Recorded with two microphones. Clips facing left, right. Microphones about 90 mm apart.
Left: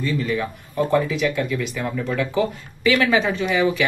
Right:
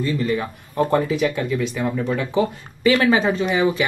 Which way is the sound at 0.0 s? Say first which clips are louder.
Right 1 dB; 25° right (ahead or behind).